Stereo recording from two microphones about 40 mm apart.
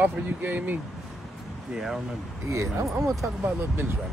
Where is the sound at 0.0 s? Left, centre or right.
Right.